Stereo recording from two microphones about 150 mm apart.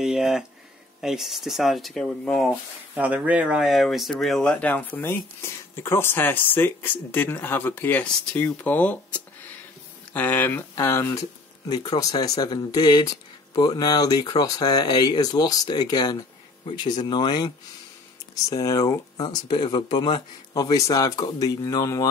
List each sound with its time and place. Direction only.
0.0 s a sound: 5° right (ahead or behind)
1.0 s speech: centre (ahead or behind)
2.9 s speech: 10° right (ahead or behind); by 17.5 s 30° left (ahead or behind)
18.5 s speech: 25° left (ahead or behind)